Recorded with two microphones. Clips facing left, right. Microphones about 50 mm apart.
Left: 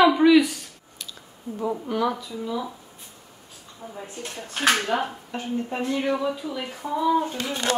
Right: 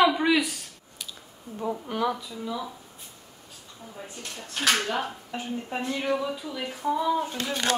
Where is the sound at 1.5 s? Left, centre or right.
Centre.